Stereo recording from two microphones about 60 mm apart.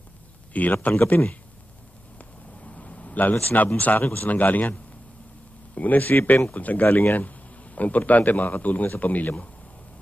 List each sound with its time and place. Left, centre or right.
0.5 s speech: left
2.1 s a sound: left
4.1 s speech: left
5.8 s speech: left